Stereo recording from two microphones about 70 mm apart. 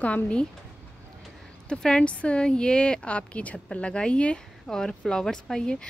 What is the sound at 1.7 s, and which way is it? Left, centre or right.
Speech, centre.